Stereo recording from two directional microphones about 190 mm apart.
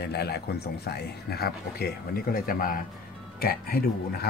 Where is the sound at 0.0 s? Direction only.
60° left (ahead or behind).